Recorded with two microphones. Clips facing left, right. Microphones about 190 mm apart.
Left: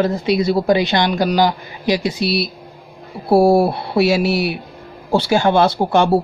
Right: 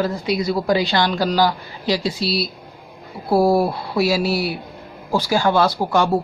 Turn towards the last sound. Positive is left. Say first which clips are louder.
# left 4 dB
turn(degrees=25)  # may be behind; listen again after turning